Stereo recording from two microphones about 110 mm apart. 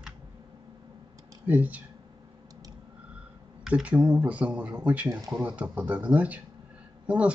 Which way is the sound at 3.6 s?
10° right (ahead or behind).